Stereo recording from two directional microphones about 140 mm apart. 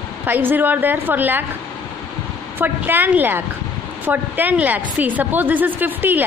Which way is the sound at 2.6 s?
15° right (ahead or behind).